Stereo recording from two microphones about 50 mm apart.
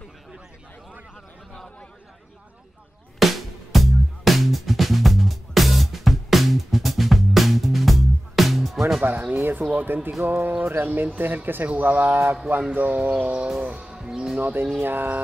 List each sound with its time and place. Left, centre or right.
3.2 s music: centre
9.0 s music: right
10.2 s speech: right
13.6 s music: right
13.9 s speech: centre
14.4 s speech: right